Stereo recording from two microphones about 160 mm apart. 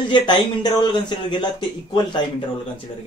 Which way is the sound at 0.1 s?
30° left (ahead or behind).